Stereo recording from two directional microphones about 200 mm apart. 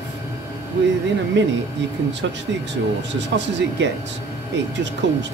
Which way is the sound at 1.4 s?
60° right (ahead or behind).